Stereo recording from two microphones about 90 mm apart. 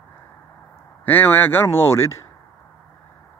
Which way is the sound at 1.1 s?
20° left (ahead or behind).